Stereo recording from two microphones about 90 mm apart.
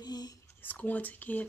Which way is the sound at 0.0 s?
45° left (ahead or behind).